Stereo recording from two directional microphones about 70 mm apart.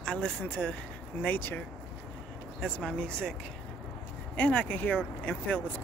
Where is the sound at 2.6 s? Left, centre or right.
Centre.